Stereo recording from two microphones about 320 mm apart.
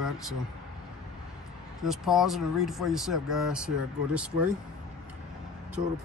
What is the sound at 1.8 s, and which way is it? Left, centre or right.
Speech, centre.